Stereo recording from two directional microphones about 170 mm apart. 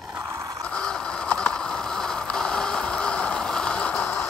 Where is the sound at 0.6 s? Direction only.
5° left (ahead or behind).